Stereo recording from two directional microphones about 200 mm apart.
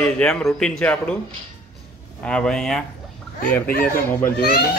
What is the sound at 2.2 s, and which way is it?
Speech, 5° left (ahead or behind).